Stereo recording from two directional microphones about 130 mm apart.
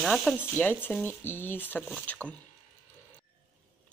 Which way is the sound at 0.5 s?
15° left (ahead or behind).